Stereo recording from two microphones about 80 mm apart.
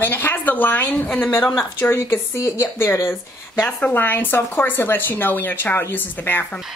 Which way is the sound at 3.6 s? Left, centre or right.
Centre.